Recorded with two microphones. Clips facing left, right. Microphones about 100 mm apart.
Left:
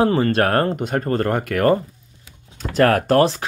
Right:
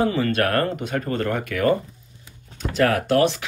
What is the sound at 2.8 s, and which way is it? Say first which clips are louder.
Speech: left 3 dB; 45° left (ahead or behind).